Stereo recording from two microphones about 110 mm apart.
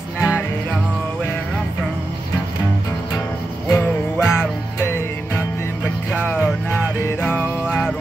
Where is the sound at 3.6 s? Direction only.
15° left (ahead or behind).